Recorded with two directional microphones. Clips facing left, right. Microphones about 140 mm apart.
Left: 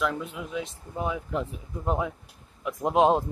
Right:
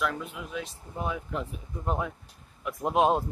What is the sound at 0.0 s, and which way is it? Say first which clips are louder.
Speech: left 2 dB; 15° left (ahead or behind).